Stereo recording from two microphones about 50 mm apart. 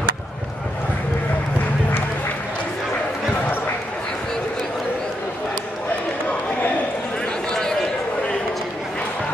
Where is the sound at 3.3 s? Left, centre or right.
Left.